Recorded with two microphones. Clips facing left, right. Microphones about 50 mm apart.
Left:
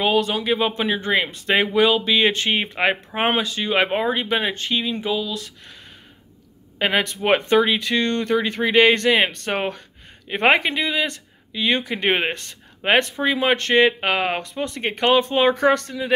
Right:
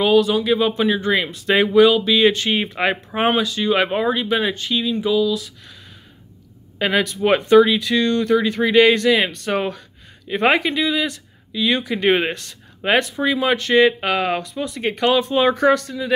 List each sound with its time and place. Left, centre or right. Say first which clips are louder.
0.2 s speech: right 4 dB; left
6.8 s speech: right 2 dB; left
13.8 s speech: right 2 dB; left
15.7 s speech: right 2 dB; left